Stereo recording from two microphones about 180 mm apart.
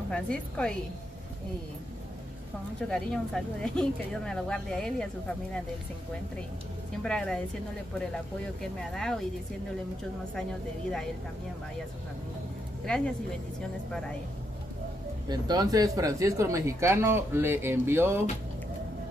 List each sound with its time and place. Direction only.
0.1 s speech: 5° left (ahead or behind)
2.9 s speech: centre (ahead or behind)
7.0 s speech: 5° left (ahead or behind)
8.9 s speech: 5° left (ahead or behind)
12.8 s speech: 5° left (ahead or behind)
15.2 s speech: 20° right (ahead or behind)